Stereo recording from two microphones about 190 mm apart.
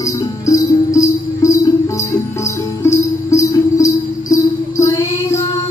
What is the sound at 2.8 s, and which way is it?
Music, 15° left (ahead or behind).